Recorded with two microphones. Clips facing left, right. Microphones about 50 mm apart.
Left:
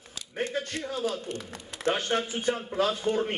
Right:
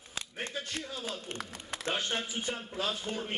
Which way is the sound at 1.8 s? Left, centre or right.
Left.